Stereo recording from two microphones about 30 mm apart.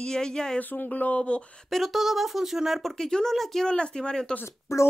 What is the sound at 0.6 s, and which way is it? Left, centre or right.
Speech, left.